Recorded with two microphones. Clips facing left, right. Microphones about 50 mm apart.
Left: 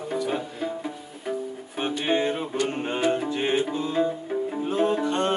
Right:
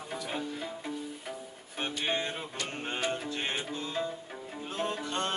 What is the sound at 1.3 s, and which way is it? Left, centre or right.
Music, centre.